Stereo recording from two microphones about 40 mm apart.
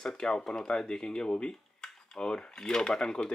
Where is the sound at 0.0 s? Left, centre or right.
Centre.